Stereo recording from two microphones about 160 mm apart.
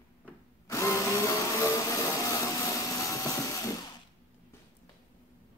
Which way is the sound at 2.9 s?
20° left (ahead or behind).